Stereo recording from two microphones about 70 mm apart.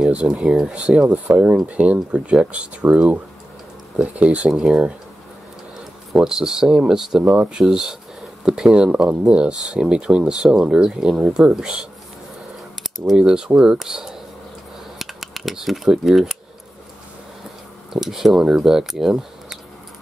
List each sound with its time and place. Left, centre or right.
0.0 s speech: centre
4.5 s speech: centre
6.1 s speech: centre
17.9 s speech: centre